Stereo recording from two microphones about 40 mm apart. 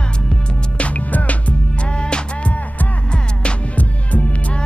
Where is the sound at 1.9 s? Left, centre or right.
Left.